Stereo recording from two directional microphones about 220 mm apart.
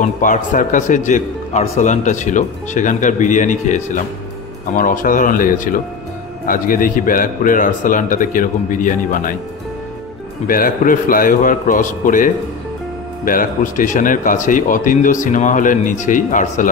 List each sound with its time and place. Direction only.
0.0 s speech: 35° left (ahead or behind)
10.4 s speech: 40° left (ahead or behind)